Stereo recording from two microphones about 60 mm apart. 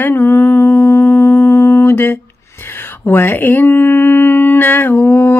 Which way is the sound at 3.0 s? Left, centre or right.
Left.